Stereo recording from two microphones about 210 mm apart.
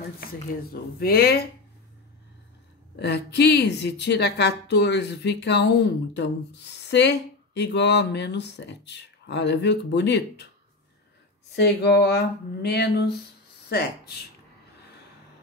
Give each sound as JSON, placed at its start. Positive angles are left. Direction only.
{"t": 0.9, "sound": "speech", "side_deg": 50}
{"t": 3.0, "sound": "speech", "side_deg": 55}
{"t": 11.5, "sound": "speech", "side_deg": 55}